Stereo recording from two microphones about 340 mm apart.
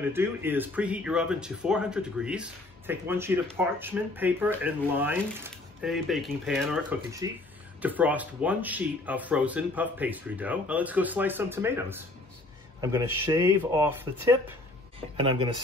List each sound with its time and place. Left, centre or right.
0.1 s speech: centre
15.0 s speech: centre